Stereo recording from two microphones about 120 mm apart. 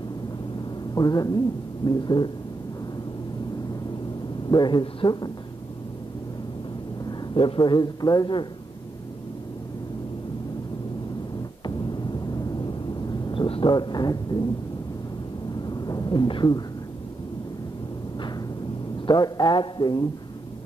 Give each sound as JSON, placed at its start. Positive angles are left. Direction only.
{"t": 0.9, "sound": "a man's voice", "side_deg": 30}
{"t": 4.5, "sound": "a man's voice", "side_deg": 40}
{"t": 7.3, "sound": "a man's voice", "side_deg": 45}
{"t": 11.6, "sound": "a sound", "side_deg": 40}
{"t": 13.3, "sound": "speech", "side_deg": 45}
{"t": 15.6, "sound": "thunder", "side_deg": 35}
{"t": 19.0, "sound": "a man's voice", "side_deg": 35}